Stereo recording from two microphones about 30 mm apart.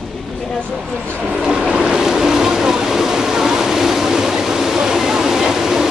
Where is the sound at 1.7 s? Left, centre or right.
Right.